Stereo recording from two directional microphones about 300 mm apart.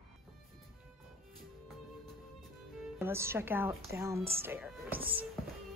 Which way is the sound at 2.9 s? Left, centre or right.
Centre.